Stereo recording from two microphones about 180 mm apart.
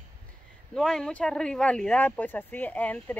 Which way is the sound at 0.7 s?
5° left (ahead or behind).